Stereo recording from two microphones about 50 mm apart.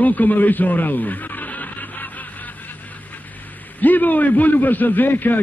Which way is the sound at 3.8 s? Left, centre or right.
Left.